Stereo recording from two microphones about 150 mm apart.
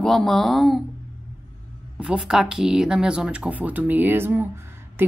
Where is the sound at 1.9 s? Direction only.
5° right (ahead or behind).